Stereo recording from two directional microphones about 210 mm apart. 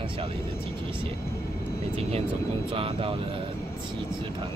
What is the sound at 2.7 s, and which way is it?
Speech, 25° right (ahead or behind).